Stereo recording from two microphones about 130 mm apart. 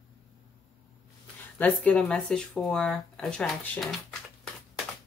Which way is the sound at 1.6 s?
10° left (ahead or behind).